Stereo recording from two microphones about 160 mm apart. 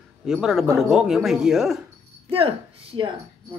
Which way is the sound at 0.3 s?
5° right (ahead or behind).